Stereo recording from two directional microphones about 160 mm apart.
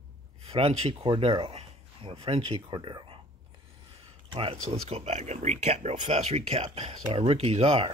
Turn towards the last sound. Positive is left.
turn(degrees=-40)  # may be behind; listen again after turning